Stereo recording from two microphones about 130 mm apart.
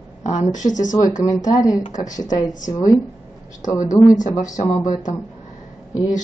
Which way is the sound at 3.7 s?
25° left (ahead or behind).